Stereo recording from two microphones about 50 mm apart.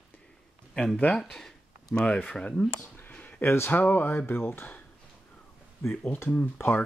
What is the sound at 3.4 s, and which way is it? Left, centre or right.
Speech, left.